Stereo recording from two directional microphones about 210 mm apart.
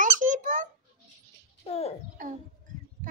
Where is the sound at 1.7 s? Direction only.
30° left (ahead or behind).